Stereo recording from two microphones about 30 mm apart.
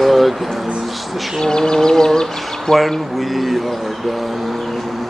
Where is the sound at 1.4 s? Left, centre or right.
Left.